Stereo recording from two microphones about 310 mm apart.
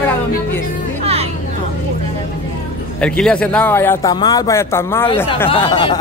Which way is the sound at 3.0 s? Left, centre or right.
Centre.